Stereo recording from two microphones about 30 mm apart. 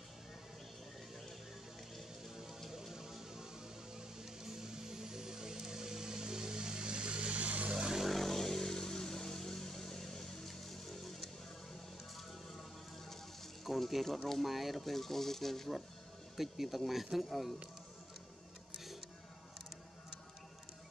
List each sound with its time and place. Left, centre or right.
2.7 s music: centre; by 7.7 s right
7.7 s vehicle: right
8.0 s vehicle: centre
13.7 s speech: centre
16.3 s speech: centre